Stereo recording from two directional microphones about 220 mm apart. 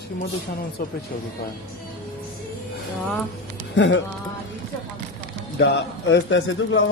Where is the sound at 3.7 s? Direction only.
60° left (ahead or behind).